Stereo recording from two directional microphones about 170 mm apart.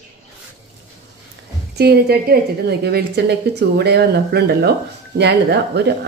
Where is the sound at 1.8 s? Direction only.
70° right (ahead or behind).